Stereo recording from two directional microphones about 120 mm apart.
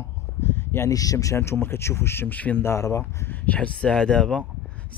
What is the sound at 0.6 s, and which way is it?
A man's voice, 20° left (ahead or behind).